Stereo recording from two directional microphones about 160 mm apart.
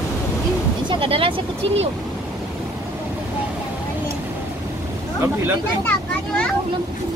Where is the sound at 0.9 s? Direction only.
35° right (ahead or behind).